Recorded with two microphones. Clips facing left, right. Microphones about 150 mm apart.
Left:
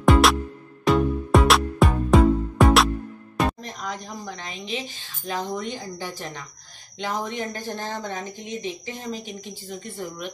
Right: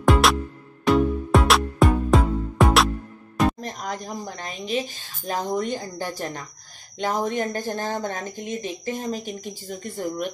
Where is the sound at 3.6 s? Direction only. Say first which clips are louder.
Right 2 dB; 45° right (ahead or behind).